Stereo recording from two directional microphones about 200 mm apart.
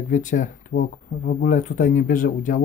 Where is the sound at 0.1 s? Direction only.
40° left (ahead or behind).